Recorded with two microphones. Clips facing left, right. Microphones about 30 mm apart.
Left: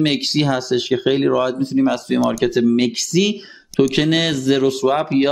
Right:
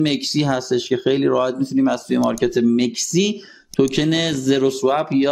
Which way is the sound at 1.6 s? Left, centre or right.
Left.